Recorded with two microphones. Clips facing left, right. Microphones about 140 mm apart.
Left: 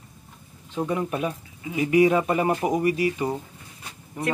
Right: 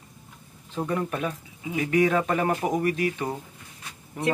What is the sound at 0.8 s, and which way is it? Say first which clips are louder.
Speech: left 2 dB; 10° left (ahead or behind).